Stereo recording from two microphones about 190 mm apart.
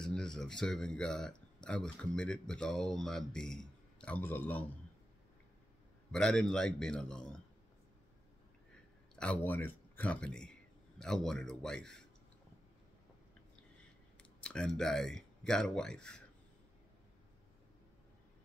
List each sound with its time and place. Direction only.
0.0 s speech: 5° left (ahead or behind)
6.1 s speech: 5° left (ahead or behind)
9.1 s speech: 5° left (ahead or behind)
13.7 s a sound: 5° left (ahead or behind)